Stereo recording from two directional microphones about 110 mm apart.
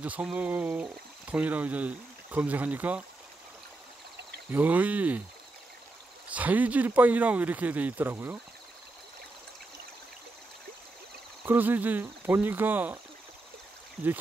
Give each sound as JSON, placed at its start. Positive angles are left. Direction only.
{"t": 0.0, "sound": "speech", "side_deg": -10}
{"t": 4.5, "sound": "speech", "side_deg": -15}
{"t": 6.3, "sound": "speech", "side_deg": -15}
{"t": 11.4, "sound": "speech", "side_deg": -15}